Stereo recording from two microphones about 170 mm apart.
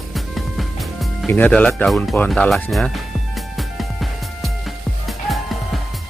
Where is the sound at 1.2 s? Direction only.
10° left (ahead or behind).